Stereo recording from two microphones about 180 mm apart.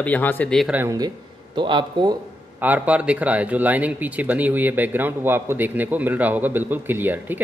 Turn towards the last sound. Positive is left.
turn(degrees=-10)  # may be behind; listen again after turning